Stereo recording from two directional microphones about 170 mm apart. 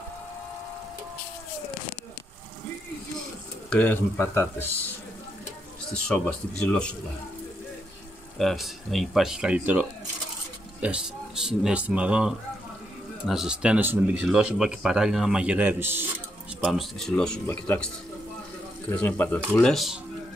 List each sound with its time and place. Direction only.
3.7 s speech: 10° left (ahead or behind)
5.9 s a man's voice: 5° left (ahead or behind)
8.4 s a man's voice: centre (ahead or behind)
16.6 s a man's voice: centre (ahead or behind)